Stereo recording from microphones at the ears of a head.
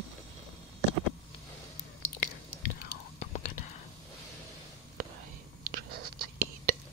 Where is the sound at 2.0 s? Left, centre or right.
Left.